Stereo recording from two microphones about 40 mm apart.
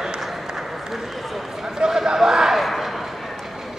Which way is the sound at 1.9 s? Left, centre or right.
Centre.